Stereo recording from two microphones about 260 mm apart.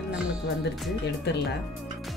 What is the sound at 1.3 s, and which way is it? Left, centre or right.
Speech, left.